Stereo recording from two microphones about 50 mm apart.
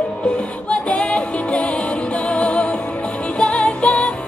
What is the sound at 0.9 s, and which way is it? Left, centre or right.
Music, left.